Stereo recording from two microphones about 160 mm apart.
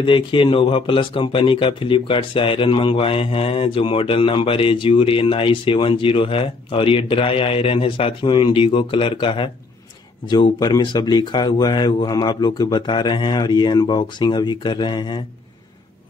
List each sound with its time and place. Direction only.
0.0 s speech: 30° left (ahead or behind)